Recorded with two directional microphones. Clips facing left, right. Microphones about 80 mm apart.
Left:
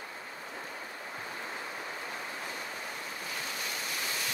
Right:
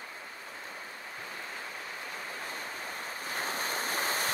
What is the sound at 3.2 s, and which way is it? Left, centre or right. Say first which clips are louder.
Waves: right 6 dB; right.